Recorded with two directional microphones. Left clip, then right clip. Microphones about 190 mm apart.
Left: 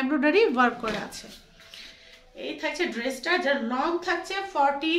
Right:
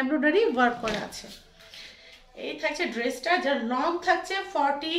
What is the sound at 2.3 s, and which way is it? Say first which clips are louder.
A woman's voice: even; 20° left (ahead or behind).